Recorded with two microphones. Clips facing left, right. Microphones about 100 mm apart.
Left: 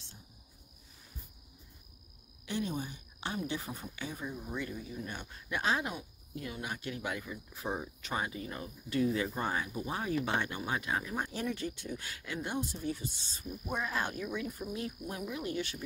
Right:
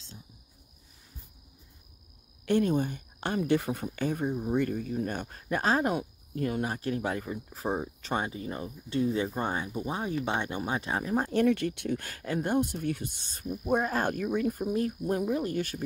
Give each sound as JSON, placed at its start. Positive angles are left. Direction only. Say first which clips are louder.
{"t": 2.4, "sound": "speech", "louder": "right 10 dB", "side_deg": -55}
{"t": 11.3, "sound": "speech", "louder": "right 11 dB", "side_deg": -65}